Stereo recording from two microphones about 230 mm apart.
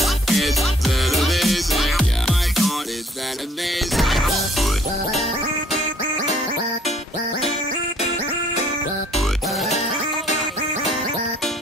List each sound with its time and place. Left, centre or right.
0.0 s music: centre
3.9 s music: centre
9.7 s music: left